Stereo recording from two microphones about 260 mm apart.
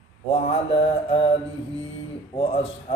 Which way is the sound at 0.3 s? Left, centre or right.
Left.